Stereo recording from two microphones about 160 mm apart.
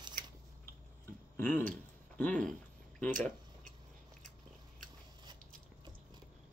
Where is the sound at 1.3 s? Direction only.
10° left (ahead or behind).